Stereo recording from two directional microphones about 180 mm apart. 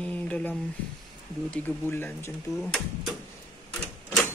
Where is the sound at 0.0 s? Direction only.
5° left (ahead or behind).